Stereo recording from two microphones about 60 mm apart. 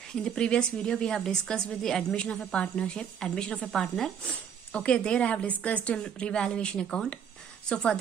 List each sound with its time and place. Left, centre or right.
0.1 s a woman's voice: centre